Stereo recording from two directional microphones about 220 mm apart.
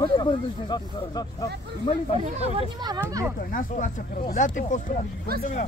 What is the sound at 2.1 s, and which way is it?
Speech, 25° right (ahead or behind).